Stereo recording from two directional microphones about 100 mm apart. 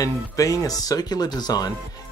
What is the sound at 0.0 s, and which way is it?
Speech, 35° left (ahead or behind).